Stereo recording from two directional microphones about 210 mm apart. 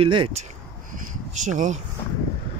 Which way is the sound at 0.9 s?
35° right (ahead or behind).